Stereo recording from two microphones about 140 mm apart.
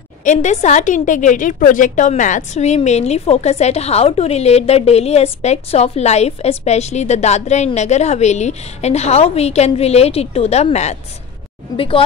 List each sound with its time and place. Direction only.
0.2 s a woman's voice: 60° left (ahead or behind)
11.7 s a woman's voice: 40° left (ahead or behind)